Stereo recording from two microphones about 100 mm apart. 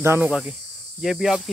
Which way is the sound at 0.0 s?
25° right (ahead or behind).